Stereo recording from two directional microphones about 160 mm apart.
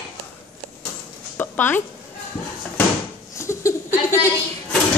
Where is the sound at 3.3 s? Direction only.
15° left (ahead or behind).